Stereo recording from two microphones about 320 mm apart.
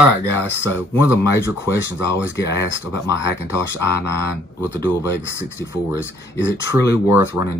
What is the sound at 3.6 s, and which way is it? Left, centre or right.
Speech, right.